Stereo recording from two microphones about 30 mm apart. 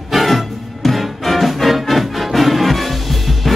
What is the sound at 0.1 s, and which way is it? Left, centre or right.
Music, centre.